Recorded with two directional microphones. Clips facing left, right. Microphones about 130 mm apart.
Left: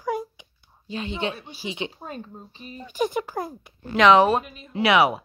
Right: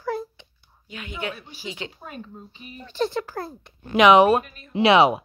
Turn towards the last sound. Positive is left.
turn(degrees=-25)  # may be behind; listen again after turning